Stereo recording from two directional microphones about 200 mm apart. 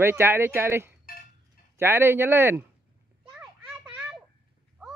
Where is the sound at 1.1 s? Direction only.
45° left (ahead or behind).